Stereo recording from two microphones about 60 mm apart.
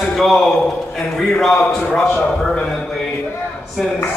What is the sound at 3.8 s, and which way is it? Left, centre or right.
Speech, centre.